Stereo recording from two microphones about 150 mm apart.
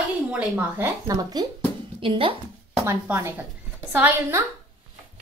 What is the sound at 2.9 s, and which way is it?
Speech, 15° right (ahead or behind).